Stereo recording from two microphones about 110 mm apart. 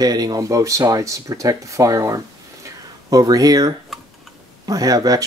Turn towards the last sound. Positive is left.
turn(degrees=-35)  # may be behind; listen again after turning